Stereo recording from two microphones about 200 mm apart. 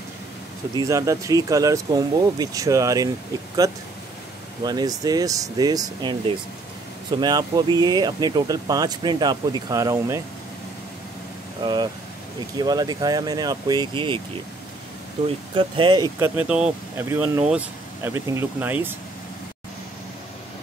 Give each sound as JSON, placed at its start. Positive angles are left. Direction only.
{"t": 0.7, "sound": "speech", "side_deg": -15}
{"t": 11.6, "sound": "speech", "side_deg": -20}
{"t": 15.2, "sound": "speech", "side_deg": -25}
{"t": 16.2, "sound": "speech", "side_deg": -5}